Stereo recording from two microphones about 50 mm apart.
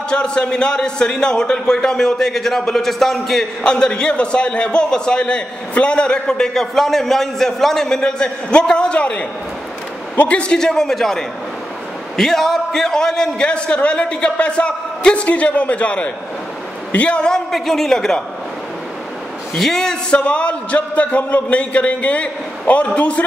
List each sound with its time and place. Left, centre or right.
0.1 s a man's voice: centre
3.6 s a man's voice: centre
10.6 s a man's voice: centre
17.5 s a man's voice: centre
19.5 s a man's voice: centre
20.1 s a man's voice: left